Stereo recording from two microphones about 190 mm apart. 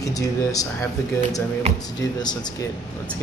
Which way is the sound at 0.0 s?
20° left (ahead or behind).